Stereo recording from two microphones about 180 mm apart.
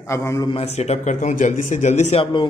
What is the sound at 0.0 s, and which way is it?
Speech, 15° left (ahead or behind).